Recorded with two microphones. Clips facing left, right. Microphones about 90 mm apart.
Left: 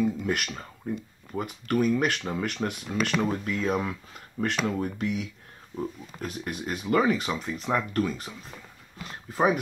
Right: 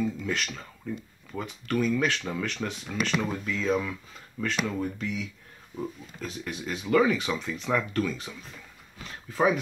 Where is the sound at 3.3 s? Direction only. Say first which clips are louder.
Even; 50° left (ahead or behind).